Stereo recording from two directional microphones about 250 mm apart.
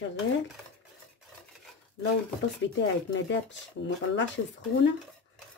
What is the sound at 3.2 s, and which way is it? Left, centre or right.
Speech, left.